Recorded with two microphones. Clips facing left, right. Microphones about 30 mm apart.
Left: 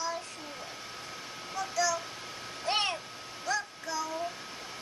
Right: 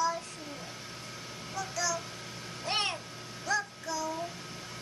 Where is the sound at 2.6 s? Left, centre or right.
Centre.